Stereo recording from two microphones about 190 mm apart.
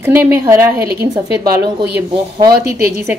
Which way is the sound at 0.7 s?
55° right (ahead or behind).